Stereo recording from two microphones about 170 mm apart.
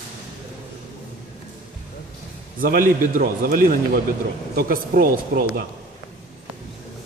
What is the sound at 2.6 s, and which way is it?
A man's voice, 55° right (ahead or behind).